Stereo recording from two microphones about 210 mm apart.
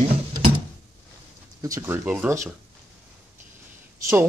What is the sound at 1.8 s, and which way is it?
Speech, 10° right (ahead or behind).